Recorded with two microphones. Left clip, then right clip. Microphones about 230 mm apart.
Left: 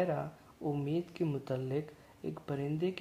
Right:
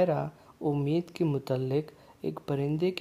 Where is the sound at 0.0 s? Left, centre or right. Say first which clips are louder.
Right 7 dB; right.